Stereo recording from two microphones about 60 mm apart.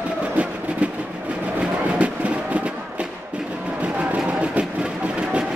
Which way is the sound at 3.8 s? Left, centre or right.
Right.